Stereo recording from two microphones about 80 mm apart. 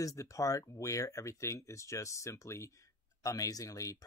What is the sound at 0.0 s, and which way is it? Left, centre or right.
Speech, left.